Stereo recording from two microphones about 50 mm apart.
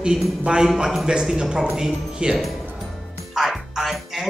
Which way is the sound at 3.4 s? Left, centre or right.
Centre.